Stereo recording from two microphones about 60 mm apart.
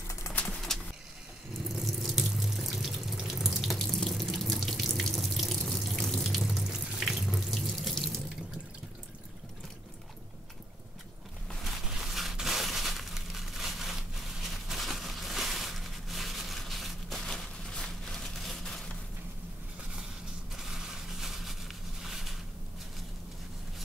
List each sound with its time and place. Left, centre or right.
0.3 s bird: centre
1.7 s water tap: centre
6.4 s sink: centre
11.8 s crushing: centre
14.7 s a sound: centre
20.5 s a sound: centre